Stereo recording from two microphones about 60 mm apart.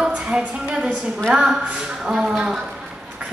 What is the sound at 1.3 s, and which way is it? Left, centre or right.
A woman's voice, centre.